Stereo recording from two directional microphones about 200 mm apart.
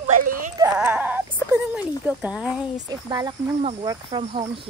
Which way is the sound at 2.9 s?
20° right (ahead or behind).